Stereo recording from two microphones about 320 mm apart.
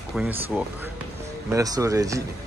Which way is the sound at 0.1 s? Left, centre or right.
Centre.